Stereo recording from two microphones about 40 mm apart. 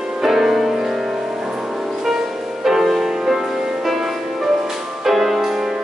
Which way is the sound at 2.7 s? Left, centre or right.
Centre.